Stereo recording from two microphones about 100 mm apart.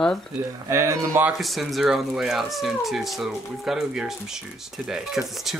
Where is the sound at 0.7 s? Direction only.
30° right (ahead or behind).